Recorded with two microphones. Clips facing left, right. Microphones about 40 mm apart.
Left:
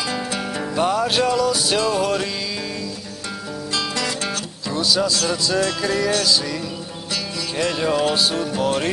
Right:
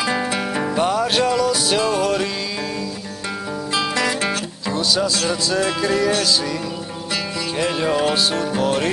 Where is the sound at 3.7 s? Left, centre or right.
Centre.